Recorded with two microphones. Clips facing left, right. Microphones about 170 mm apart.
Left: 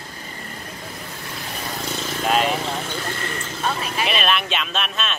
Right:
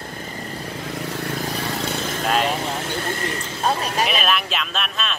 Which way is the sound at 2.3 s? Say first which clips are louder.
Left 1 dB; centre (ahead or behind).